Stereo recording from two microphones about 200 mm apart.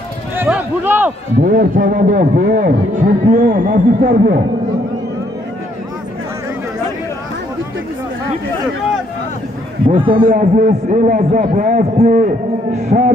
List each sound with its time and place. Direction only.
0.4 s a sound: 10° right (ahead or behind)
1.4 s a man's voice: 40° right (ahead or behind)
9.8 s a man's voice: 25° right (ahead or behind)
10.2 s a man's voice: 40° right (ahead or behind)